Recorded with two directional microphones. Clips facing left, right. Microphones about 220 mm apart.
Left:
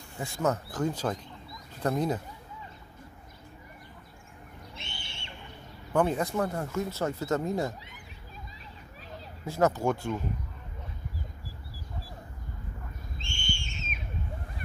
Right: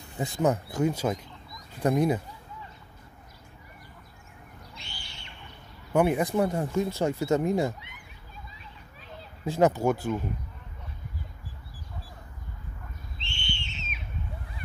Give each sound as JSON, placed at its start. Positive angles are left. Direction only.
{"t": 0.2, "sound": "speech", "side_deg": -20}
{"t": 4.7, "sound": "owl", "side_deg": 25}
{"t": 5.9, "sound": "speech", "side_deg": -15}
{"t": 9.5, "sound": "speech", "side_deg": -15}
{"t": 13.2, "sound": "a sound", "side_deg": 45}